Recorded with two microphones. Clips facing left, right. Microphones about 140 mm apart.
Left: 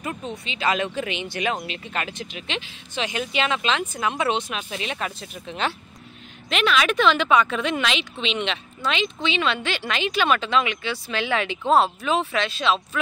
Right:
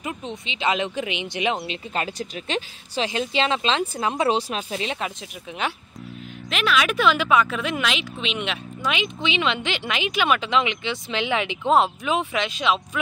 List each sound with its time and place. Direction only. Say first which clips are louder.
0.0 s speech: even; 20° right (ahead or behind); by 3.1 s 40° right (ahead or behind)
3.1 s speech: right 1 dB; 30° right (ahead or behind)
4.9 s a woman's voice: even; 15° right (ahead or behind)